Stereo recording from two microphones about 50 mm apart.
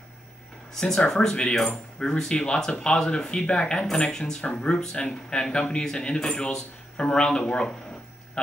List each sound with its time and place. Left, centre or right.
0.7 s speech: centre